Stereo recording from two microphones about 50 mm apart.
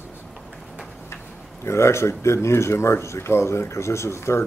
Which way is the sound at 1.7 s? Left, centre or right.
Left.